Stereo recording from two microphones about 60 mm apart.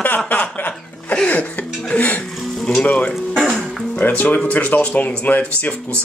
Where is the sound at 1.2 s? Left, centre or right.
Left.